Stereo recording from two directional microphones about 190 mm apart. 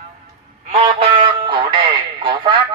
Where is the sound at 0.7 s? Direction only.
35° right (ahead or behind).